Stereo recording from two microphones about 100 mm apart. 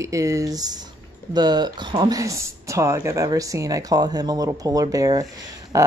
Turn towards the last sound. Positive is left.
turn(degrees=-35)  # may be behind; listen again after turning